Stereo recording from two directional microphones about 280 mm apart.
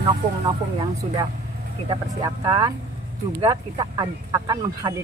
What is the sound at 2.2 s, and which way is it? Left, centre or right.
Speech, centre.